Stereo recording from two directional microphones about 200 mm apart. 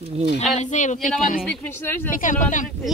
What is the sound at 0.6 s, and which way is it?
Speech, 35° left (ahead or behind).